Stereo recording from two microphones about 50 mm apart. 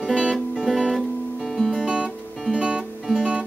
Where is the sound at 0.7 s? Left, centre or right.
Centre.